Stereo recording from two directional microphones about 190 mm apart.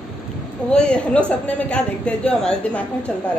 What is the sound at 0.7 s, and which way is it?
A woman's voice, 5° left (ahead or behind).